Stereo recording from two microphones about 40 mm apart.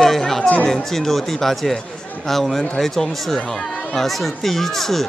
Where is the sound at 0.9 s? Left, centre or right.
Centre.